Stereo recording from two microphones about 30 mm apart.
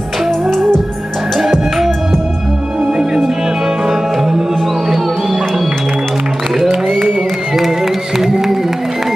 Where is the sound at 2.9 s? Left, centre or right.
Centre.